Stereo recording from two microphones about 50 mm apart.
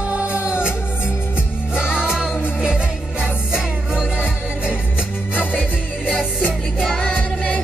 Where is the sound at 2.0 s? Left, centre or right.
Centre.